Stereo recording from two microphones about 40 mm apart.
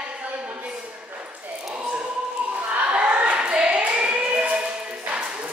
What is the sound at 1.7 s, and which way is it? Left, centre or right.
Basketball bounce, right.